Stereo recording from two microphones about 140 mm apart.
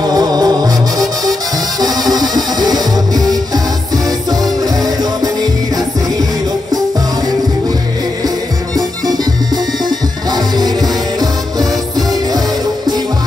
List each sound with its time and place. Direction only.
0.0 s music: 30° right (ahead or behind)
9.0 s music: 30° right (ahead or behind)